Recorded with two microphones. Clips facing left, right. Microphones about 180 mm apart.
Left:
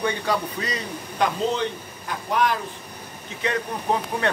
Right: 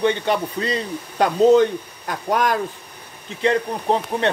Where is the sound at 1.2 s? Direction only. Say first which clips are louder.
Right 10 dB; 45° right (ahead or behind).